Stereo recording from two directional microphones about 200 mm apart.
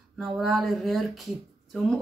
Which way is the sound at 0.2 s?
Centre (ahead or behind).